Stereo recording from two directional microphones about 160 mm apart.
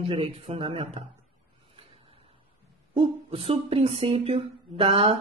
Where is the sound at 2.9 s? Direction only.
35° right (ahead or behind).